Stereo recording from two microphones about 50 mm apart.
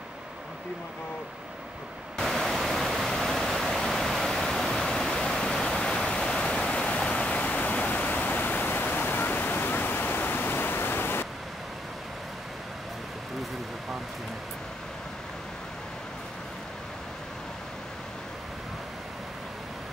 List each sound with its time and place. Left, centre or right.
2.1 s pink noise: centre; by 11.2 s left